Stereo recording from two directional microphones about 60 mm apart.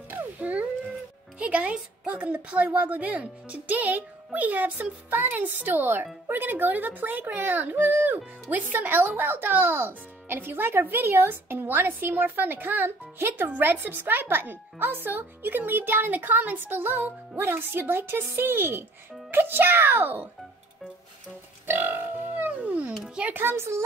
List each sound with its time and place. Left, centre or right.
0.1 s music: right
1.4 s speech: right
21.6 s music: right
23.3 s speech: right